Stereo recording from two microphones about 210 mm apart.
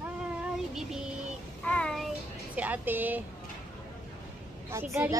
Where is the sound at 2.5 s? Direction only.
5° right (ahead or behind).